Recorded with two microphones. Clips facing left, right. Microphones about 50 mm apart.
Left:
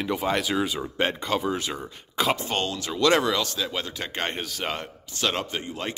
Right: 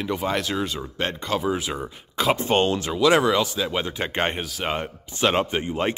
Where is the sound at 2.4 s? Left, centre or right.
Right.